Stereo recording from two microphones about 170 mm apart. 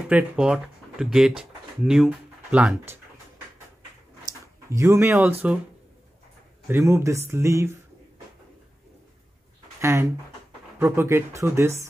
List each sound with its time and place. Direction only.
0.1 s speech: 5° right (ahead or behind)
4.6 s speech: 15° right (ahead or behind)
6.7 s speech: 15° right (ahead or behind)
9.8 s speech: 15° right (ahead or behind)